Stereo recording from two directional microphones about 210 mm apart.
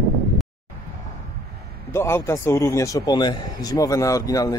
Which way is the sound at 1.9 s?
10° left (ahead or behind).